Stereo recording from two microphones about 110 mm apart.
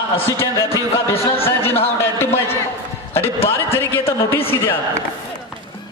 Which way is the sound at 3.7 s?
20° left (ahead or behind).